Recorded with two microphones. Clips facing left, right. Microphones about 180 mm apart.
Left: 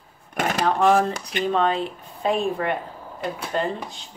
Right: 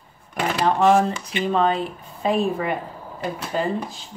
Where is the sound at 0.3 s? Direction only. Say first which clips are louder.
Even; 45° left (ahead or behind).